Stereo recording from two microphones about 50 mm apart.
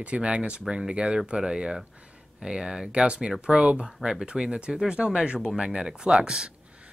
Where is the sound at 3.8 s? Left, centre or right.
Centre.